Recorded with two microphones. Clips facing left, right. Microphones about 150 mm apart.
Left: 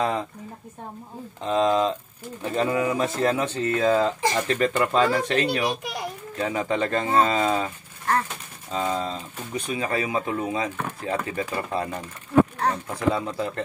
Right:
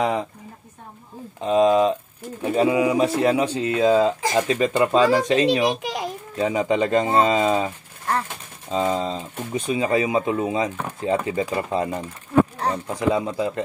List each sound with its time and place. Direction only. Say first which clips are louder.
0.0 s speech: right 3 dB; 15° right (ahead or behind)
1.4 s speech: right 4 dB; 10° right (ahead or behind)
5.7 s a child's voice: right 4 dB; 90° right
6.3 s speech: right 5 dB; 20° right (ahead or behind)